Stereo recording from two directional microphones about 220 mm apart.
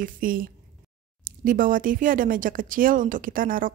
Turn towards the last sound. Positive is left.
turn(degrees=-40)  # may be behind; listen again after turning